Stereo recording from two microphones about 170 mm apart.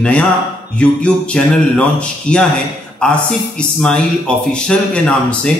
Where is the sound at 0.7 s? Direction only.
5° left (ahead or behind).